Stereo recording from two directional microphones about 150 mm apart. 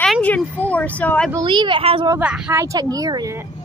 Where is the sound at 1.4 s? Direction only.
30° right (ahead or behind).